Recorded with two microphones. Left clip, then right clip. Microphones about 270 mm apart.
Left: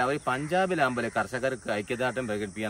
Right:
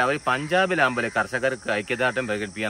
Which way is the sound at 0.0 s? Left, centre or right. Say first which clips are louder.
Right 5 dB; centre.